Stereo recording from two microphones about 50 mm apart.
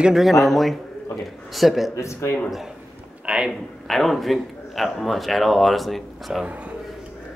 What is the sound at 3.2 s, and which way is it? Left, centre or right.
Speech, right.